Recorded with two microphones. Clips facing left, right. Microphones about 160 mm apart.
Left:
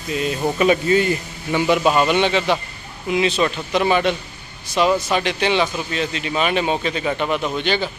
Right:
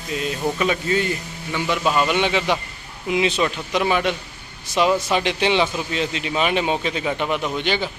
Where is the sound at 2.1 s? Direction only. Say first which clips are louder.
Left 2 dB; 10° right (ahead or behind).